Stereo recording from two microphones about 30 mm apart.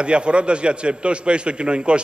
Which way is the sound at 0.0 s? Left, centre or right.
Right.